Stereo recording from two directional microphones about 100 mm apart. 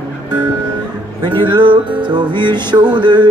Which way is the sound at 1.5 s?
50° right (ahead or behind).